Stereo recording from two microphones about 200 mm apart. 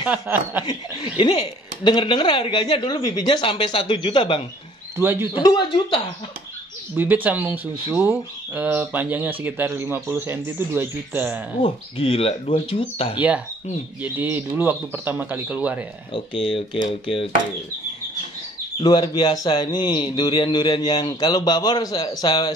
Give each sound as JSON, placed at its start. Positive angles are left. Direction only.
{"t": 0.0, "sound": "speech", "side_deg": -10}
{"t": 0.7, "sound": "speech", "side_deg": 25}
{"t": 4.9, "sound": "speech", "side_deg": -10}
{"t": 5.4, "sound": "speech", "side_deg": 20}
{"t": 7.0, "sound": "speech", "side_deg": -10}
{"t": 11.6, "sound": "speech", "side_deg": 30}
{"t": 14.1, "sound": "speech", "side_deg": -10}
{"t": 16.1, "sound": "speech", "side_deg": 25}
{"t": 18.8, "sound": "speech", "side_deg": 20}